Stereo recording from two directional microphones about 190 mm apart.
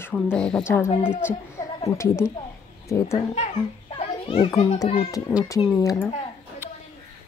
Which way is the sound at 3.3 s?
30° left (ahead or behind).